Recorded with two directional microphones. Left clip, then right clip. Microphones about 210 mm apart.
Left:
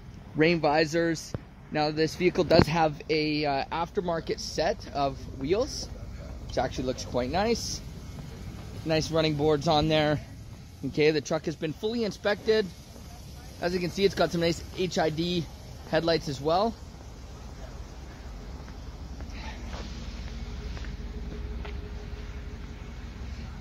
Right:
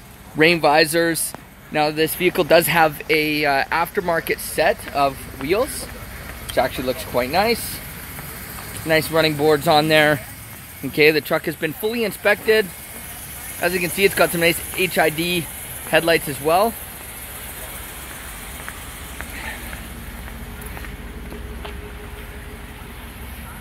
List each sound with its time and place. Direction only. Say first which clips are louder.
0.4 s speech: right 9 dB; centre (ahead or behind)
8.8 s speech: right 9 dB; centre (ahead or behind)